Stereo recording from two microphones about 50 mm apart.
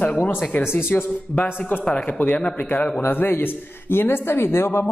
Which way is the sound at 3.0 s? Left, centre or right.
Left.